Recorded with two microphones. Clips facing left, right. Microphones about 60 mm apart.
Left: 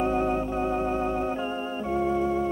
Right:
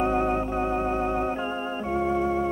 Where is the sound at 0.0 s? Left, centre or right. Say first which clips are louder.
Right 1 dB; right.